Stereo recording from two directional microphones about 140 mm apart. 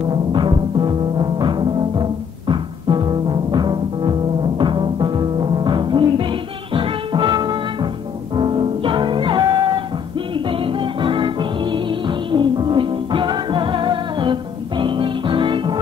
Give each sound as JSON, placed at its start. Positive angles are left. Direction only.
{"t": 0.1, "sound": "timpani", "side_deg": -35}
{"t": 6.7, "sound": "music", "side_deg": -35}